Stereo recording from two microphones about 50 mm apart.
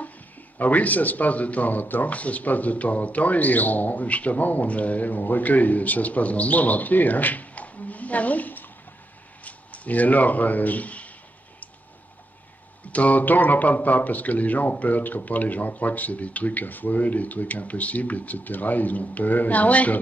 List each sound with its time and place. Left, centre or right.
0.6 s speech: left
12.9 s speech: left